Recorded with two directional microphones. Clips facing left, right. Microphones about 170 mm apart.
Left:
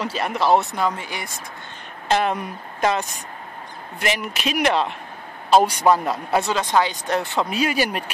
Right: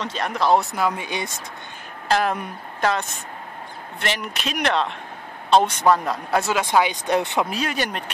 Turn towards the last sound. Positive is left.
turn(degrees=5)  # may be behind; listen again after turning